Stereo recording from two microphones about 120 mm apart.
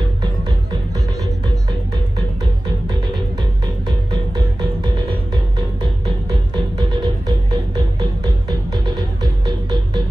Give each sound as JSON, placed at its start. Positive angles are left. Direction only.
{"t": 0.2, "sound": "music", "side_deg": -35}
{"t": 2.9, "sound": "music", "side_deg": -40}